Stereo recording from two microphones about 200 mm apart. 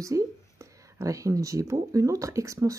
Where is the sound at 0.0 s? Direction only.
15° right (ahead or behind).